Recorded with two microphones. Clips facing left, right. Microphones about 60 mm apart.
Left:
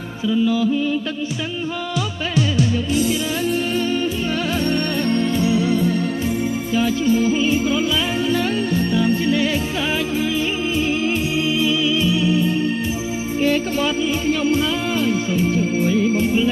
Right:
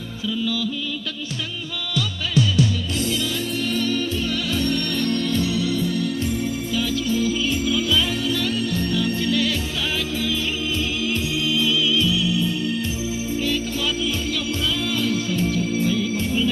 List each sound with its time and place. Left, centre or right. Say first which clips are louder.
0.3 s music: left 7 dB; left
5.0 s music: left 3 dB; left
11.4 s music: left 1 dB; left